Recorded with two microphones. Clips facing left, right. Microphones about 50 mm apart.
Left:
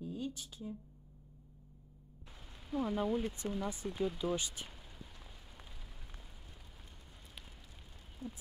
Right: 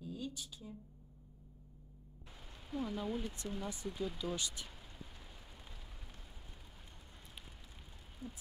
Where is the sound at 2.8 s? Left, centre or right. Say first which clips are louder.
Left 5 dB; left.